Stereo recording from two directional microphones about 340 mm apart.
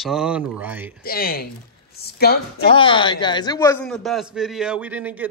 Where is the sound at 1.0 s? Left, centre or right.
Left.